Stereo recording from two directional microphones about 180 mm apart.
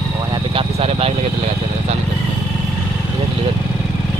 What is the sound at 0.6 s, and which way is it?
Vehicle, 35° right (ahead or behind).